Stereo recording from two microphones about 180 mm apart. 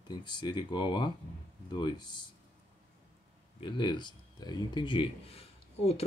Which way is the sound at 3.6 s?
25° left (ahead or behind).